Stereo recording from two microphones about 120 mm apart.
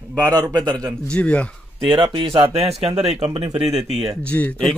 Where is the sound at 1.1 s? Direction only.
10° left (ahead or behind).